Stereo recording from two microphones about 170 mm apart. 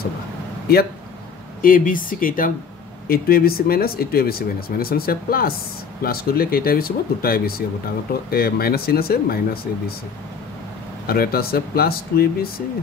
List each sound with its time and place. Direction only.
0.7 s speech: 65° left (ahead or behind)
1.6 s speech: 55° left (ahead or behind)
11.1 s speech: 60° left (ahead or behind)